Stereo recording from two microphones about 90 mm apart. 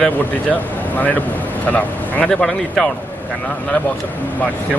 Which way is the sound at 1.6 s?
15° left (ahead or behind).